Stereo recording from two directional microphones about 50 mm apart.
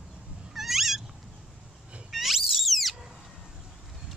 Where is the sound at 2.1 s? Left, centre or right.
Centre.